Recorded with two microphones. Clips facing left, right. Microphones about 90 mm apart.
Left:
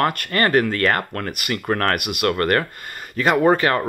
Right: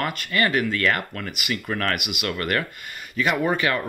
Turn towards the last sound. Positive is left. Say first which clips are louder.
# left 6 dB
turn(degrees=40)  # may be behind; listen again after turning